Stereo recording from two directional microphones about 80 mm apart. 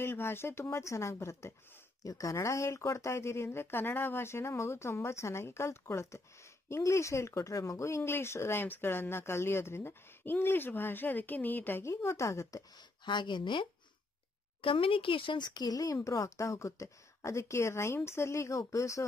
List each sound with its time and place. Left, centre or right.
0.0 s speech: left
11.8 s speech: left
13.0 s speech: left